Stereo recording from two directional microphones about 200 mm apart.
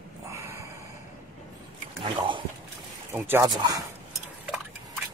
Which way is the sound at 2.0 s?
25° right (ahead or behind).